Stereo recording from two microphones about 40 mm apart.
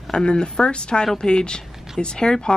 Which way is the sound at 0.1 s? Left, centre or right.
Left.